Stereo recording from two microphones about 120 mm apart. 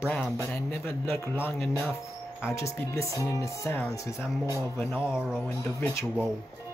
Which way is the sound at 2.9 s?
25° left (ahead or behind).